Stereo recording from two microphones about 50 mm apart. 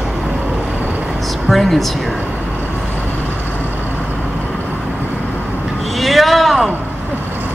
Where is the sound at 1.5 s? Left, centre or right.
Centre.